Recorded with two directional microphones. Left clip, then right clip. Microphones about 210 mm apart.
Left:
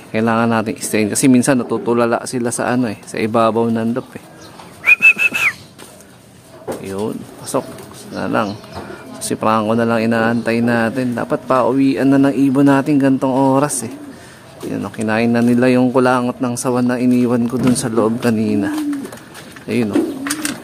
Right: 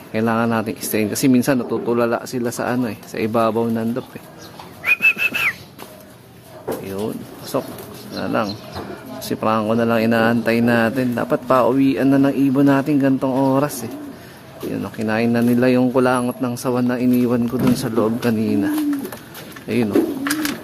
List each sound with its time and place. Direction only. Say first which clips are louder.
0.1 s a man's voice: left 3 dB; 20° left (ahead or behind)
4.8 s whistling: left 6 dB; 20° left (ahead or behind)
6.8 s a sound: left 3 dB; 20° left (ahead or behind)
8.1 s a man's voice: left 3 dB; 20° left (ahead or behind)